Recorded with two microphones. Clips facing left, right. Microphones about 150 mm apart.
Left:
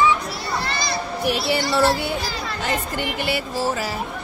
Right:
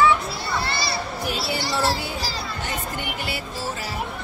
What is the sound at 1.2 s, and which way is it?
Music, 70° left (ahead or behind).